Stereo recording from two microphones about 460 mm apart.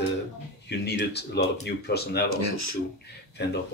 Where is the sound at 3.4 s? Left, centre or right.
Left.